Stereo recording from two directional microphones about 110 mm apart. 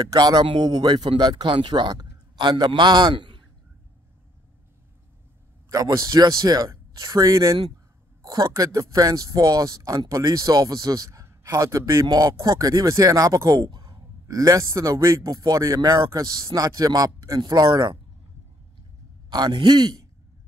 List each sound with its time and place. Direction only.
0.1 s a man's voice: 35° right (ahead or behind)
5.7 s a man's voice: 35° right (ahead or behind)
19.3 s speech: 40° right (ahead or behind)